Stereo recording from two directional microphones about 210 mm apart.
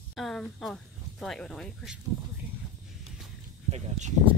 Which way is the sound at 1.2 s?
5° left (ahead or behind).